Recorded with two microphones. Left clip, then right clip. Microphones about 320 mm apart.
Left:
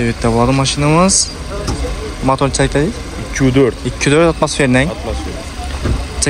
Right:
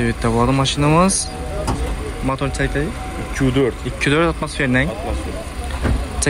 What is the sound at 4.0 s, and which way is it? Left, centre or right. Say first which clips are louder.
Speech: left 6 dB; centre.